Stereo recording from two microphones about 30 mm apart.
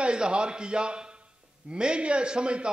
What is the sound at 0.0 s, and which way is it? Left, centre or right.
A man's voice, right.